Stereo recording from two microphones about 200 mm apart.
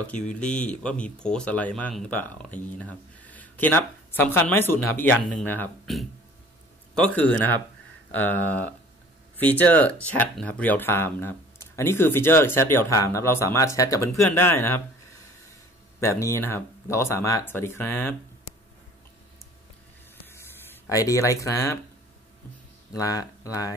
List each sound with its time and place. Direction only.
0.7 s speech: 5° left (ahead or behind)
8.1 s speech: 10° left (ahead or behind)
16.0 s speech: 15° left (ahead or behind)
20.2 s a sound: 10° left (ahead or behind)
22.9 s speech: 15° left (ahead or behind)